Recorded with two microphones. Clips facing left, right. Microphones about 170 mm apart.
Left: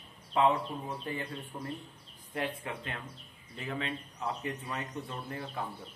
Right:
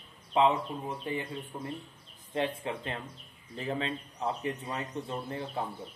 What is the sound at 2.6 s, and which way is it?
Speech, 30° right (ahead or behind).